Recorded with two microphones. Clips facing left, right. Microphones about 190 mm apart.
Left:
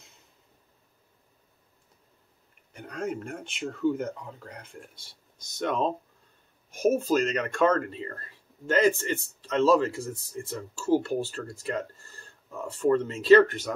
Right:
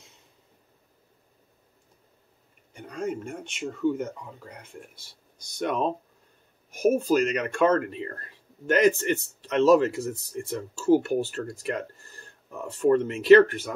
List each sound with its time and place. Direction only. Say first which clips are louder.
2.7 s speech: right 1 dB; centre (ahead or behind)
5.6 s speech: right 1 dB; 10° right (ahead or behind)